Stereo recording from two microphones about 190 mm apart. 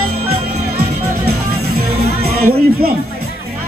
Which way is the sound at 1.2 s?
55° right (ahead or behind).